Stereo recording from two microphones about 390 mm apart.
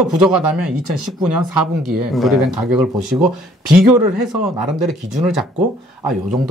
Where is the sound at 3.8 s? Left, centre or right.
Right.